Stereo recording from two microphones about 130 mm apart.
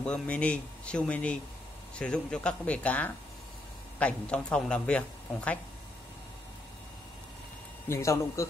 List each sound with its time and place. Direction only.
0.0 s speech: 10° left (ahead or behind)
7.9 s speech: 25° left (ahead or behind)